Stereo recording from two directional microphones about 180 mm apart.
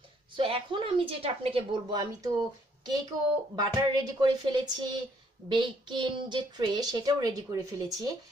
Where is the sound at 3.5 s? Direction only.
25° right (ahead or behind).